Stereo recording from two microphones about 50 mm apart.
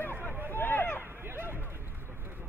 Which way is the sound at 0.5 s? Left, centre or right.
Left.